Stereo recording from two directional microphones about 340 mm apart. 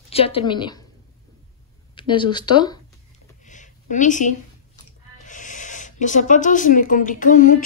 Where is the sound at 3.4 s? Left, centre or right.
Left.